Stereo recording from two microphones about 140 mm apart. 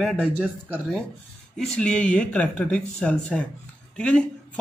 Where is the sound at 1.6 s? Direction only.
5° left (ahead or behind).